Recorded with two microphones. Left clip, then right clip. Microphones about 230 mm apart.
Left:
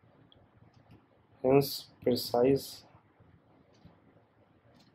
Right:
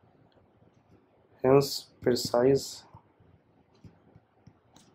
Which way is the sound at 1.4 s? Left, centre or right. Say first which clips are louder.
Right 3 dB; right.